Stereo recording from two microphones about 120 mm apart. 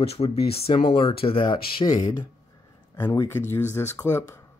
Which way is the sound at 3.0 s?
25° left (ahead or behind).